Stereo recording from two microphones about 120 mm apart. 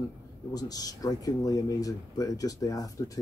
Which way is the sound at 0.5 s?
30° left (ahead or behind).